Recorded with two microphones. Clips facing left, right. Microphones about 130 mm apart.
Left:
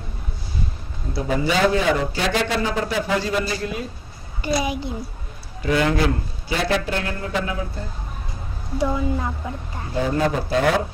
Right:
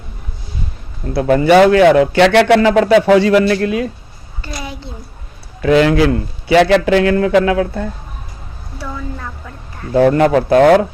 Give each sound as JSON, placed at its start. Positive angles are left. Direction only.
{"t": 1.0, "sound": "a man's voice", "side_deg": -65}
{"t": 4.4, "sound": "a child's voice", "side_deg": 15}
{"t": 5.6, "sound": "a man's voice", "side_deg": -90}
{"t": 8.7, "sound": "speech", "side_deg": 20}
{"t": 9.9, "sound": "a man's voice", "side_deg": -65}